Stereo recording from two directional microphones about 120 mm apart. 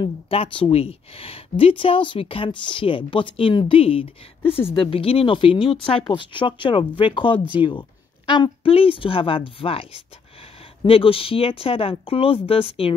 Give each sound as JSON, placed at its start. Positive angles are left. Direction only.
{"t": 0.0, "sound": "speech", "side_deg": 50}